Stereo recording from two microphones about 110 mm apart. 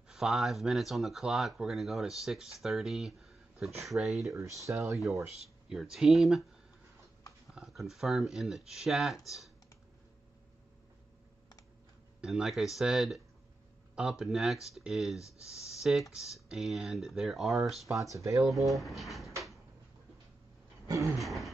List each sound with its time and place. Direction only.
0.1 s speech: centre (ahead or behind)
4.2 s speech: 30° right (ahead or behind)
5.7 s speech: 5° right (ahead or behind)
7.5 s speech: 5° right (ahead or behind)
12.2 s speech: 5° right (ahead or behind)
18.1 s speech: 30° right (ahead or behind)
18.4 s speech: centre (ahead or behind)
20.8 s a sound: 30° right (ahead or behind)
21.2 s speech: centre (ahead or behind)